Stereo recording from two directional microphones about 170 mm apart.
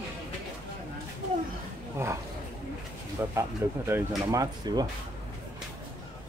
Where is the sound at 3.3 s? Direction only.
15° right (ahead or behind).